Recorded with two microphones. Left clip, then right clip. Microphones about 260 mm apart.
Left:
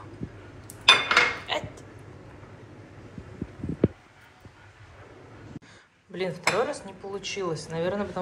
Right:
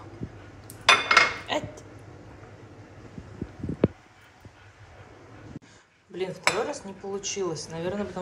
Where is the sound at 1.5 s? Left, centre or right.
Right.